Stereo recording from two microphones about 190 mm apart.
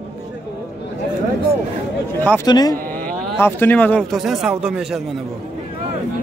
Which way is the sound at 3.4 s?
10° left (ahead or behind).